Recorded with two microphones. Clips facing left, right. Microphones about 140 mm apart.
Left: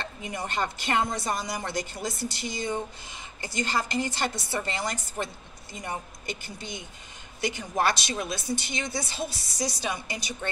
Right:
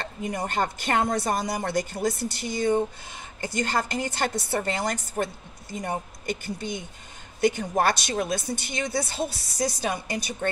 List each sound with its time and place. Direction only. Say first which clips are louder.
0.0 s a woman's voice: right 4 dB; 45° right (ahead or behind)